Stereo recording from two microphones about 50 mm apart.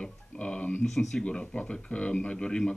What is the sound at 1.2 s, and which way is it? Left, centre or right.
Speech, centre.